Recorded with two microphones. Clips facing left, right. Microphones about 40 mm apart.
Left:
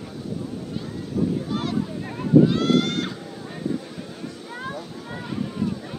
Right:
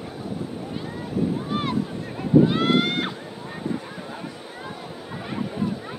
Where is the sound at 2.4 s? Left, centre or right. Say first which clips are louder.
Left 1 dB; right.